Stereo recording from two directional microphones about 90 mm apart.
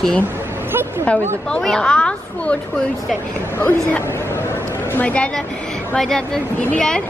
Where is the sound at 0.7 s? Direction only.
25° right (ahead or behind).